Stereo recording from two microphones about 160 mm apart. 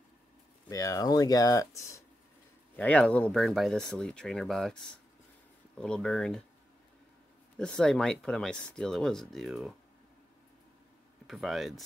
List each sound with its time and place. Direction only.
0.7 s speech: 20° left (ahead or behind)
2.7 s speech: 10° left (ahead or behind)
7.5 s speech: 5° left (ahead or behind)
11.2 s speech: centre (ahead or behind)